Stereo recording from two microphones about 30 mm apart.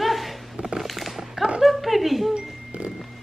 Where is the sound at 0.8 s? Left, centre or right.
Centre.